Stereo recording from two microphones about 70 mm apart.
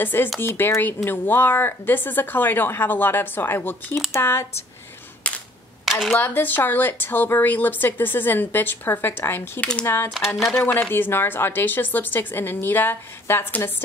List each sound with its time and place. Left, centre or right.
0.0 s a woman's voice: left
5.2 s cap gun: centre
5.9 s speech: centre
6.1 s a woman's voice: left
10.1 s speech: centre
10.5 s a woman's voice: left